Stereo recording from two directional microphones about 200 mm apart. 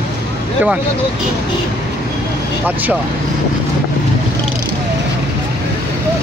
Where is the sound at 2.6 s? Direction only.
10° right (ahead or behind).